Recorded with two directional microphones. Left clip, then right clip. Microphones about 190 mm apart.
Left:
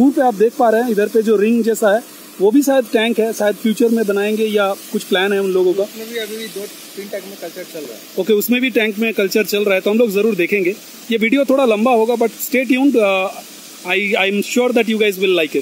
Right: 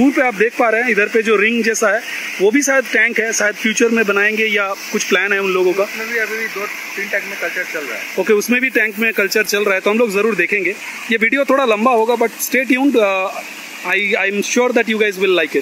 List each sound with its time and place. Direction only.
0.0 s speech: 20° right (ahead or behind)
3.7 s speech: centre (ahead or behind)
4.5 s speech: 20° right (ahead or behind)
8.2 s speech: 5° left (ahead or behind)